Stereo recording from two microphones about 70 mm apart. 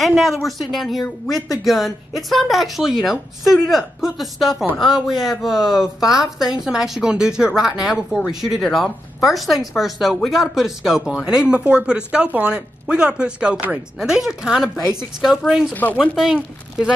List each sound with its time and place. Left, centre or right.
0.0 s a woman's voice: centre
15.7 s speech: left
16.0 s speech: centre